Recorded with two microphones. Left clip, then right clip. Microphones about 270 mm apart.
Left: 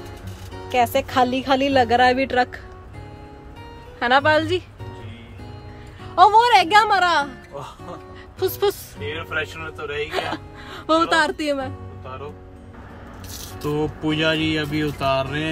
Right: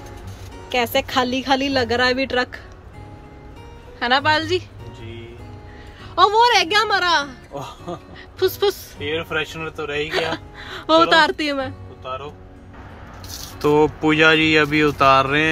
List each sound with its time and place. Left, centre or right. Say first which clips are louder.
0.7 s speech: left 1 dB; centre
4.0 s speech: left 1 dB; centre
6.1 s a woman's voice: left 1 dB; centre
8.4 s a woman's voice: right 2 dB; centre
9.3 s a man's voice: right 2 dB; right
10.0 s speech: right 3 dB; centre
13.6 s speech: right 9 dB; centre